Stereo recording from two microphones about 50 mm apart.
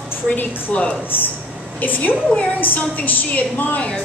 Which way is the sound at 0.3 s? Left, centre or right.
Left.